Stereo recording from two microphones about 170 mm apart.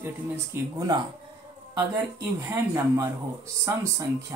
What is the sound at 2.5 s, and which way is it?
Speech, 15° right (ahead or behind).